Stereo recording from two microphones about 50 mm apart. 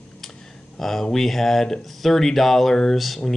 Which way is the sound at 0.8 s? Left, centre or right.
Centre.